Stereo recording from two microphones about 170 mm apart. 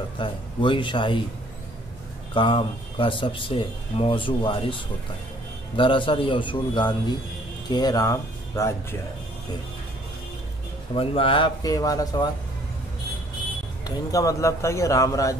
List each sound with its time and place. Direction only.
0.2 s speech: 30° left (ahead or behind)
2.3 s speech: 30° left (ahead or behind)
5.8 s speech: 30° left (ahead or behind)
11.0 s speech: 30° left (ahead or behind)
13.8 s speech: 20° left (ahead or behind)